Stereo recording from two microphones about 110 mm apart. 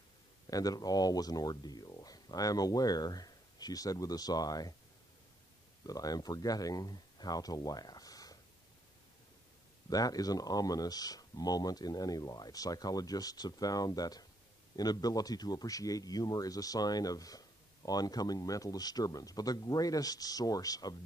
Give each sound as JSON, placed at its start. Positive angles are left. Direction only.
{"t": 0.5, "sound": "speech", "side_deg": 35}
{"t": 5.9, "sound": "speech", "side_deg": 35}
{"t": 9.8, "sound": "speech", "side_deg": 35}